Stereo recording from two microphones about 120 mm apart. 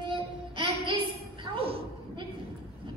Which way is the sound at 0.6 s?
45° right (ahead or behind).